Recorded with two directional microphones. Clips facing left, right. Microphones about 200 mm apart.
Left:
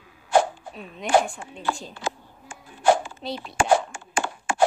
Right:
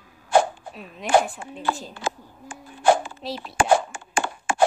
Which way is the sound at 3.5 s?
55° right (ahead or behind).